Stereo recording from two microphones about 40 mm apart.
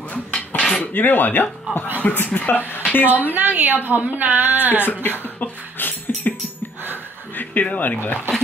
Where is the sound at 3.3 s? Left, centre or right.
Right.